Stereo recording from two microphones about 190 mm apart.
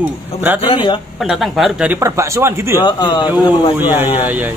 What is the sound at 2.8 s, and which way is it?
Speech, 20° left (ahead or behind).